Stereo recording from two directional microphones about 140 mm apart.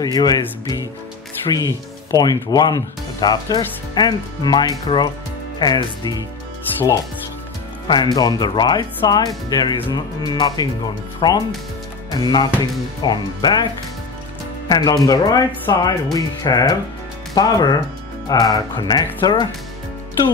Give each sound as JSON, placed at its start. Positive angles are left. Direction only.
{"t": 0.0, "sound": "speech", "side_deg": 30}
{"t": 7.9, "sound": "speech", "side_deg": 30}
{"t": 12.1, "sound": "music", "side_deg": 30}
{"t": 13.0, "sound": "speech", "side_deg": 30}
{"t": 14.7, "sound": "speech", "side_deg": 25}